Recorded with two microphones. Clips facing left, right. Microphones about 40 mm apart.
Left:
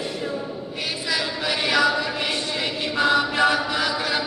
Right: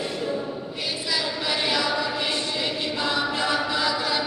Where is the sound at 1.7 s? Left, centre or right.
Left.